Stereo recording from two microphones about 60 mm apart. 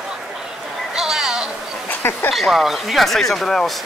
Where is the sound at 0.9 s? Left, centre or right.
Centre.